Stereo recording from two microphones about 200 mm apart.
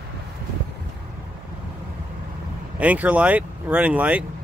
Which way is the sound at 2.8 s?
5° right (ahead or behind).